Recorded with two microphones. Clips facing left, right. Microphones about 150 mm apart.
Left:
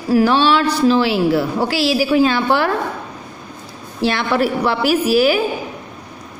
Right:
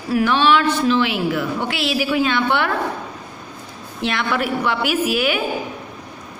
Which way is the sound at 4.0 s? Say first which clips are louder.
Left 5 dB; 35° left (ahead or behind).